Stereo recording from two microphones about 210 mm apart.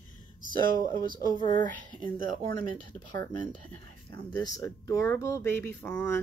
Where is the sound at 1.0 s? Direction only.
20° right (ahead or behind).